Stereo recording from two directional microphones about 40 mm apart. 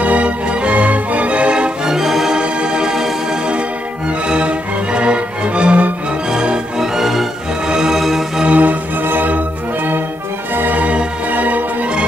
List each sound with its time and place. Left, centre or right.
0.0 s music: right
1.9 s music: centre
2.3 s music: right
4.3 s music: right
6.8 s music: centre
8.5 s music: right
9.0 s music: right
10.5 s music: right
10.8 s music: right